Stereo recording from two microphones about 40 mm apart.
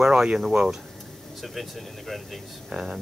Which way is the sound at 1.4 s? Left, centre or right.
Centre.